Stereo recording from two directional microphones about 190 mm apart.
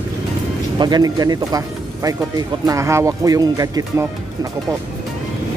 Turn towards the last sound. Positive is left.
turn(degrees=-20)  # may be behind; listen again after turning